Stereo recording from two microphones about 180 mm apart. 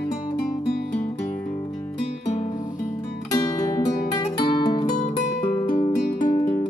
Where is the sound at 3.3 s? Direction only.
20° left (ahead or behind).